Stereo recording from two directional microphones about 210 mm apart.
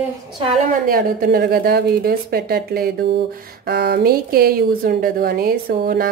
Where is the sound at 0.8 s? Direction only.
45° right (ahead or behind).